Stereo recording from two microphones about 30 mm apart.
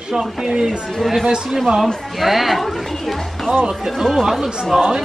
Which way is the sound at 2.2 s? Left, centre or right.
Centre.